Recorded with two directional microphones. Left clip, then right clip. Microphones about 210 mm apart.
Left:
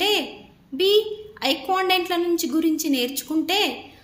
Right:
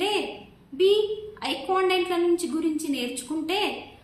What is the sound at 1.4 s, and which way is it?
A woman's voice, 45° left (ahead or behind).